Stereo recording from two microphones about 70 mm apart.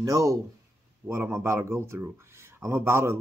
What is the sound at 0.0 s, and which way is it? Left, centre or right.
A man's voice, right.